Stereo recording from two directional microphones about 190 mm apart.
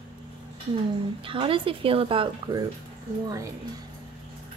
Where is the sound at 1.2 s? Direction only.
25° right (ahead or behind).